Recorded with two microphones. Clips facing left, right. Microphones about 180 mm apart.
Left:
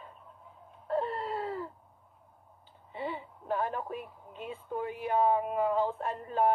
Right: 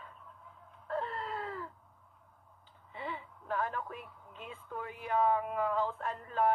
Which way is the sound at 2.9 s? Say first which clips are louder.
Left 5 dB; 25° left (ahead or behind).